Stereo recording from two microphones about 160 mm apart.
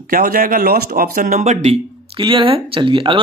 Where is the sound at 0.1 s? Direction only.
65° right (ahead or behind); by 1.8 s 45° right (ahead or behind).